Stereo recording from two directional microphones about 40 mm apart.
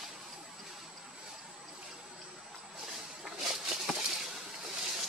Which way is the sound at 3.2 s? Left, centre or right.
Centre.